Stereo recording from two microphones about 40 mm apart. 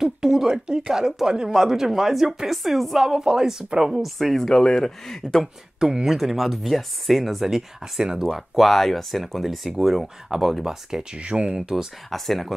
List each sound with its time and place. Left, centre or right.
0.0 s speech: centre
4.4 s speech: centre
5.8 s speech: centre
6.0 s speech: centre
10.6 s speech: centre
11.1 s speech: right
12.1 s speech: centre